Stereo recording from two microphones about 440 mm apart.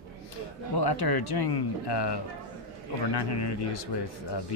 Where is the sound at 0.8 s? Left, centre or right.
Left.